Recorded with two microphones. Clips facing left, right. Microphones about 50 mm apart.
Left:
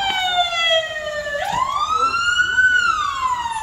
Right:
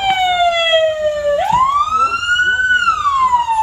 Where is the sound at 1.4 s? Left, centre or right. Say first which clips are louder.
Right 5 dB; right.